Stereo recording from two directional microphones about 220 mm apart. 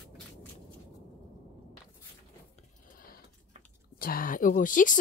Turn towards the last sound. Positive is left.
turn(degrees=35)  # may be behind; listen again after turning